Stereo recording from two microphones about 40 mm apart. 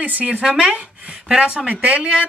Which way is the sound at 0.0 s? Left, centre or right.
Right.